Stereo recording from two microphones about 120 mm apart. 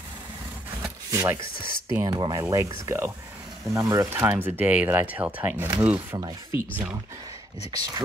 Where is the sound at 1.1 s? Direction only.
25° right (ahead or behind).